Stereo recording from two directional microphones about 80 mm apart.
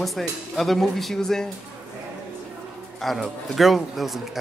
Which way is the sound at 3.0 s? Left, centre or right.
Centre.